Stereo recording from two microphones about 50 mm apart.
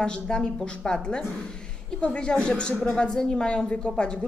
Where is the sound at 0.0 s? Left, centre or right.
Centre.